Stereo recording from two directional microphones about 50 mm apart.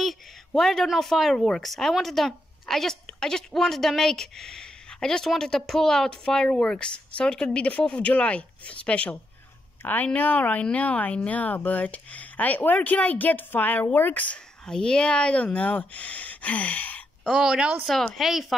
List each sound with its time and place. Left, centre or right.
0.5 s a woman's voice: centre; by 9.1 s left
10.1 s speech: left
14.7 s speech: centre
17.3 s speech: centre
17.8 s speech: centre
18.2 s speech: centre